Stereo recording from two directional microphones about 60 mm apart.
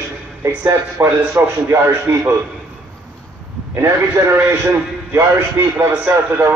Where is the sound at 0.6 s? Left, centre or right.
Right.